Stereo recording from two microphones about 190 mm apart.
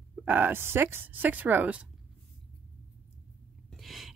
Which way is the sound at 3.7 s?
Centre (ahead or behind).